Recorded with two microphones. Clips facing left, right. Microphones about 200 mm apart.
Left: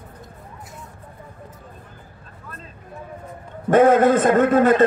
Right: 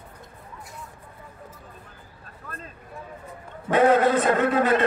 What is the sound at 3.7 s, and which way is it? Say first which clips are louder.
A man's voice: left 5 dB; 50° left (ahead or behind).